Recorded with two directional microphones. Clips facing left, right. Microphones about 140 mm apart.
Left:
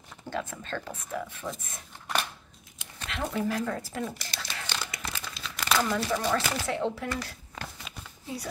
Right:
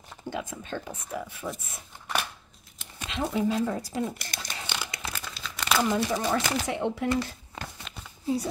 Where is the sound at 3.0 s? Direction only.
20° right (ahead or behind).